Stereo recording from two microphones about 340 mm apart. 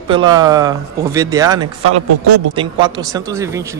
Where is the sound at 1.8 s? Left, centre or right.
Right.